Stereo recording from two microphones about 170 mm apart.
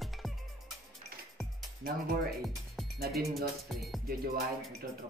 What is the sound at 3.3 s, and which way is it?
Speech, centre (ahead or behind).